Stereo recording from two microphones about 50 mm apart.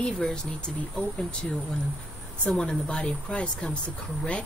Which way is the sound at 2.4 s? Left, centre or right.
Centre.